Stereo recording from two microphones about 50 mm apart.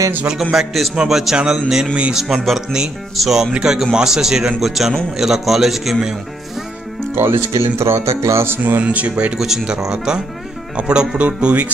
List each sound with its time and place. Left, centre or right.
0.3 s speech: centre
7.2 s speech: right
7.5 s speech: right
8.5 s speech: right
8.8 s speech: right
9.4 s speech: centre; by 11.7 s right